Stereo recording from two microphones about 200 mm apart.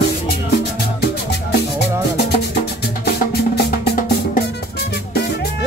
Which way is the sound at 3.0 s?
50° left (ahead or behind).